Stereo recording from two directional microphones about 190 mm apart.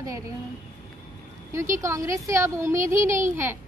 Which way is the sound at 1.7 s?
15° right (ahead or behind).